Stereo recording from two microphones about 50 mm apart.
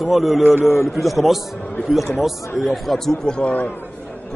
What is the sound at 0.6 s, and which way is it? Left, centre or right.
Speech, left.